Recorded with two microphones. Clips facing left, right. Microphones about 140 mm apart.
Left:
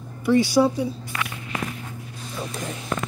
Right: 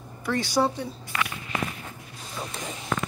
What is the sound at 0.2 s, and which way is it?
Speech, 10° left (ahead or behind).